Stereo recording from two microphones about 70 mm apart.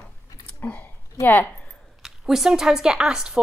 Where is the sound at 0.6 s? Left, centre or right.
Left.